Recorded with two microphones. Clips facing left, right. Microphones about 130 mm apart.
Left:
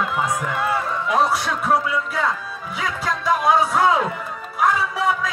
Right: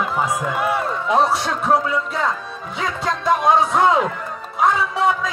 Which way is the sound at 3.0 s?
25° right (ahead or behind).